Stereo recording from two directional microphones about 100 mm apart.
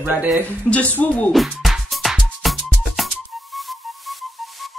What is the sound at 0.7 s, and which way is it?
Speech, 15° left (ahead or behind).